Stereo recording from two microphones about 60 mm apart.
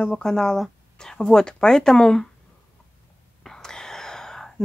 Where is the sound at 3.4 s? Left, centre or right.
Centre.